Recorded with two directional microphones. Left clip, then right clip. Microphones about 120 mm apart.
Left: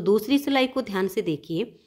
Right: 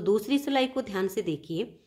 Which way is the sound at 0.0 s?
30° left (ahead or behind).